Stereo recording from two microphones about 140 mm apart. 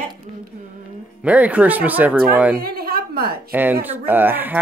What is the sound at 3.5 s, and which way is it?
Speech, 15° right (ahead or behind).